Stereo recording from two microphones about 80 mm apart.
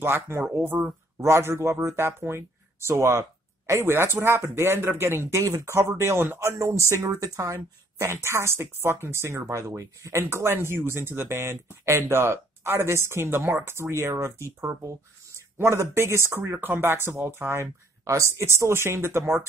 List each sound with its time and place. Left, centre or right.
0.0 s speech: right